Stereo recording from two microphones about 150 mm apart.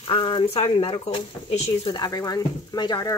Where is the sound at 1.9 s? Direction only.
25° left (ahead or behind).